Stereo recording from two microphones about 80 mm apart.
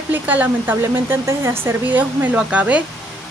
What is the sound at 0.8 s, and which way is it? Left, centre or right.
Speech, right.